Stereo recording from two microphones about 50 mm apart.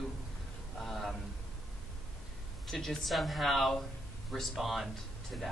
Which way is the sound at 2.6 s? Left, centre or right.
Centre.